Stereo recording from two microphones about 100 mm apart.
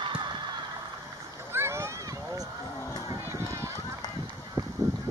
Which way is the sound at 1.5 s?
25° right (ahead or behind).